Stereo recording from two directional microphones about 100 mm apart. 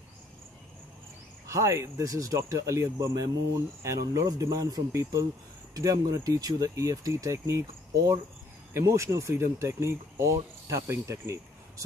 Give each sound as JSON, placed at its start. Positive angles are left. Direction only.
{"t": 1.5, "sound": "speech", "side_deg": -30}
{"t": 8.7, "sound": "speech", "side_deg": -30}